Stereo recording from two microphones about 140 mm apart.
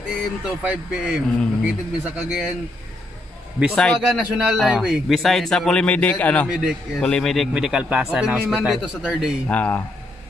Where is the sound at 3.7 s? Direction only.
5° left (ahead or behind).